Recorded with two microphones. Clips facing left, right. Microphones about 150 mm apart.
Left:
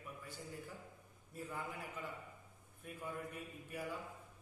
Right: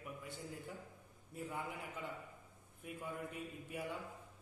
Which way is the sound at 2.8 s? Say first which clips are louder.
Right 1 dB; 25° right (ahead or behind).